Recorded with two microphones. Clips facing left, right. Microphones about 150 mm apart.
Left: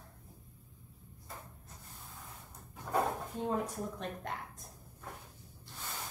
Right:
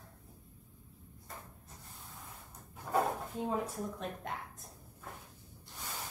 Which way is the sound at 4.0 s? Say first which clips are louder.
Even; centre (ahead or behind).